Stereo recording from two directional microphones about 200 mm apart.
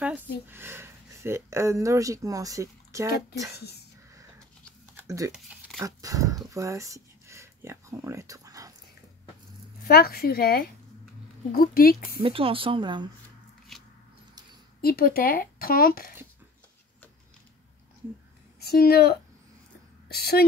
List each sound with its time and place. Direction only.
0.0 s speech: 10° right (ahead or behind)
4.9 s a sound: 15° right (ahead or behind)
5.3 s a sound: 5° right (ahead or behind)
5.8 s speech: 15° right (ahead or behind)
9.8 s speech: 50° left (ahead or behind)
12.2 s speech: 30° right (ahead or behind)
13.7 s a sound: centre (ahead or behind)
14.8 s speech: 50° left (ahead or behind)
18.6 s a woman's voice: 50° left (ahead or behind)